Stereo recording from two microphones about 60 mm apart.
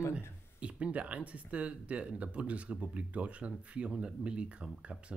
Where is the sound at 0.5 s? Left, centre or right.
Centre.